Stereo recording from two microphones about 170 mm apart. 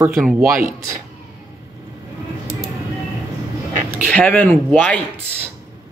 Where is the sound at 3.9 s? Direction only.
5° left (ahead or behind).